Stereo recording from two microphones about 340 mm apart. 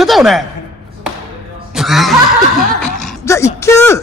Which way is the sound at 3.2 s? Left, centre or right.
Centre.